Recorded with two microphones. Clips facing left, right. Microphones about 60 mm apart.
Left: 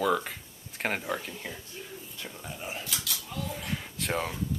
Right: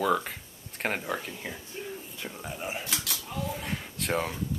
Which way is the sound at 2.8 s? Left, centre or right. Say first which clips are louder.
Right 2 dB; right.